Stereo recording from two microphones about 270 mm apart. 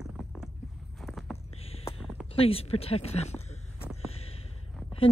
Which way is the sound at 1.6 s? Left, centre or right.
Left.